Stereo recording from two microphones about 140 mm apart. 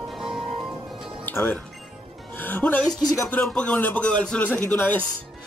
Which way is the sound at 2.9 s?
25° left (ahead or behind).